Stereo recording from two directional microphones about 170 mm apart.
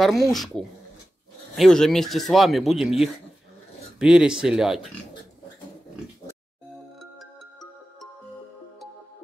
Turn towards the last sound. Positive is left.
turn(degrees=0)  # may be behind; listen again after turning